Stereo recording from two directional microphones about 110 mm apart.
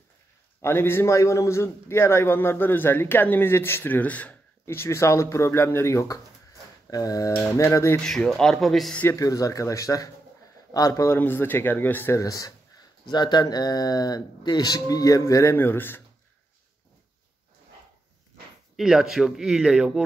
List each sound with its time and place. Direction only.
0.6 s a man's voice: 20° left (ahead or behind)
8.0 s speech: 5° left (ahead or behind)
9.0 s speech: 30° left (ahead or behind)
11.1 s a man's voice: 20° left (ahead or behind)
12.2 s speech: 35° left (ahead or behind)
18.8 s speech: 5° right (ahead or behind)